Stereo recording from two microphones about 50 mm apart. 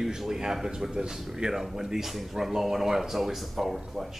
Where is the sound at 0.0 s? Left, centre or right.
Centre.